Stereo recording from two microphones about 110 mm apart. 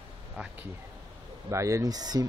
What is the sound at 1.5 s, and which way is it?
Speech, 25° right (ahead or behind).